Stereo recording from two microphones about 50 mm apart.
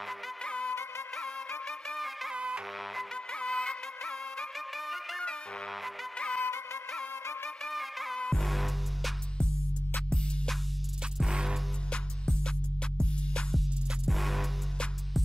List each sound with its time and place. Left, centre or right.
0.5 s music: left
2.3 s music: right
3.3 s music: centre
4.7 s music: centre
6.1 s music: left
6.4 s music: left
7.7 s music: centre
8.2 s music: centre
8.5 s music: centre
10.0 s music: centre
11.2 s music: centre
11.9 s music: centre
14.0 s music: centre